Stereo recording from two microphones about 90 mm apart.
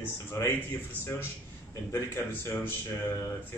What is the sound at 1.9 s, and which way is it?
Speech, 25° left (ahead or behind).